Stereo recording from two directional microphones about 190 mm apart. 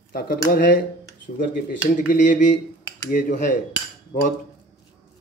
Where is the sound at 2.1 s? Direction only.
40° left (ahead or behind).